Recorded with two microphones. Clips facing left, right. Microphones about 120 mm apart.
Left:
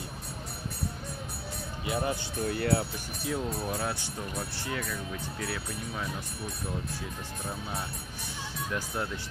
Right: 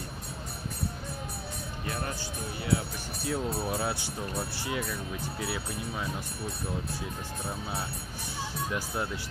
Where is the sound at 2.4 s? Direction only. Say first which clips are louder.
Left 9 dB; 65° left (ahead or behind).